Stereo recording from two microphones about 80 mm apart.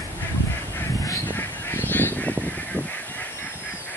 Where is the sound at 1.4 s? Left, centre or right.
Left.